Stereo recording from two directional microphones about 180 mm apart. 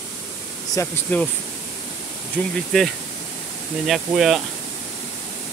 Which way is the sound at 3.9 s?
Centre (ahead or behind).